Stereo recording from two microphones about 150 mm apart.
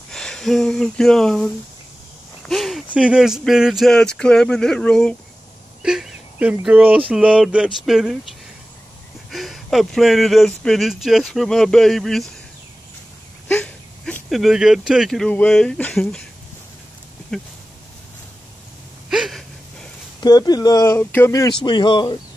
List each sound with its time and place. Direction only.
0.1 s speech: 5° left (ahead or behind)
9.3 s speech: centre (ahead or behind)
13.5 s speech: 10° left (ahead or behind)
17.3 s speech: centre (ahead or behind)
19.0 s a sound: 5° right (ahead or behind)
20.2 s speech: 25° left (ahead or behind)